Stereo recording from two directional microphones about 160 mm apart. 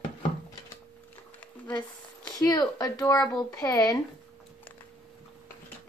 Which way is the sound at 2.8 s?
25° left (ahead or behind).